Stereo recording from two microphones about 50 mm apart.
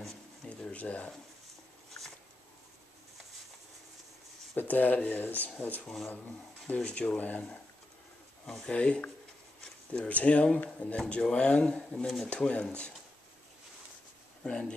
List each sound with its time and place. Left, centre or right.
0.7 s speech: left
4.6 s speech: left
8.5 s speech: centre
8.7 s speech: left
14.4 s speech: centre